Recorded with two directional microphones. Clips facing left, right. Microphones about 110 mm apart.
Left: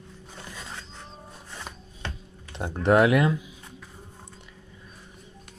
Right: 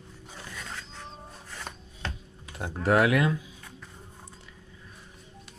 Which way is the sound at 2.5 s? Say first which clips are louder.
Left 3 dB; 25° left (ahead or behind).